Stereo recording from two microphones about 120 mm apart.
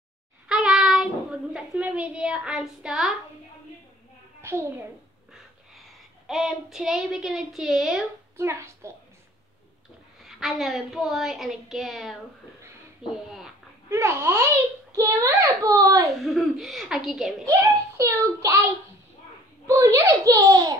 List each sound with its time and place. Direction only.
0.5 s a child's voice: 5° right (ahead or behind)
4.4 s a child's voice: 20° right (ahead or behind)
5.8 s a woman's voice: centre (ahead or behind)
8.4 s a child's voice: 20° right (ahead or behind)
10.2 s a woman's voice: centre (ahead or behind)
13.8 s a child's voice: 20° right (ahead or behind)
16.3 s a woman's voice: centre (ahead or behind)
17.5 s a child's voice: 25° right (ahead or behind)
19.7 s a child's voice: 25° right (ahead or behind)